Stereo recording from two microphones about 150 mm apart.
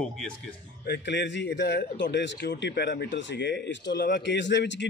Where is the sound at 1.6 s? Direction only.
90° left.